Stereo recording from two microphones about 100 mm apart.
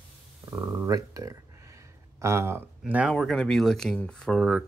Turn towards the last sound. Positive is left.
turn(degrees=5)  # may be behind; listen again after turning